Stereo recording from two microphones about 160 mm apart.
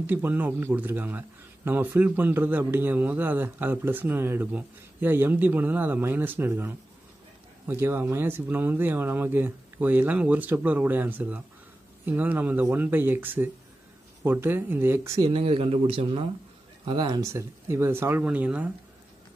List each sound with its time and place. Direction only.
0.0 s speech: 10° right (ahead or behind)
15.2 s speech: 35° right (ahead or behind); by 18.7 s 10° right (ahead or behind)